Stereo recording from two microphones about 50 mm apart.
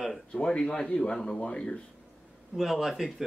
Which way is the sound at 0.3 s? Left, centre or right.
Centre.